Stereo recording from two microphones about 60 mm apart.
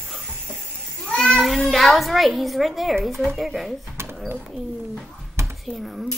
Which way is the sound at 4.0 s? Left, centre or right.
Right.